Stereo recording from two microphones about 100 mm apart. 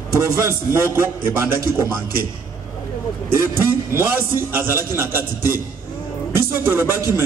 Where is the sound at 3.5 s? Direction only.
25° right (ahead or behind).